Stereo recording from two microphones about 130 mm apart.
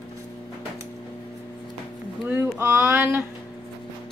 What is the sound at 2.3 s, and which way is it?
Speech, 15° right (ahead or behind).